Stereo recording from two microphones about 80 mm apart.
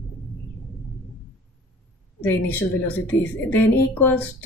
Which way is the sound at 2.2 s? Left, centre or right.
Left.